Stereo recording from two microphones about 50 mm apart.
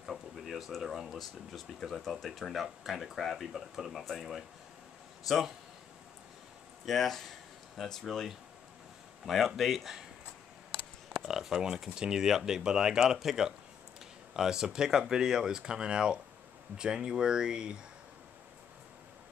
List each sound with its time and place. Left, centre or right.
0.0 s speech: centre
6.9 s speech: centre
9.2 s speech: centre
11.2 s speech: centre